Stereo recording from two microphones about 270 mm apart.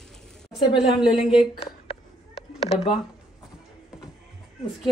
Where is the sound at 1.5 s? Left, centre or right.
Left.